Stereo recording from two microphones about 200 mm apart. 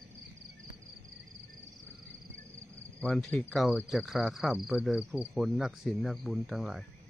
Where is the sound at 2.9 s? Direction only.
5° left (ahead or behind).